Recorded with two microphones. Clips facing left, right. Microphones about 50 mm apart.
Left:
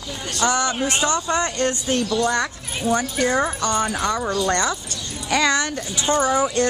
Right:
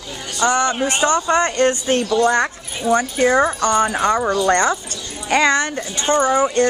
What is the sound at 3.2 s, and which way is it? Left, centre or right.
Speech, right.